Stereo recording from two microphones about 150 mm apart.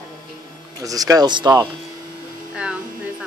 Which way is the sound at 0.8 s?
25° right (ahead or behind).